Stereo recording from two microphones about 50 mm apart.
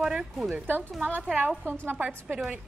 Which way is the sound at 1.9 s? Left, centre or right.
Right.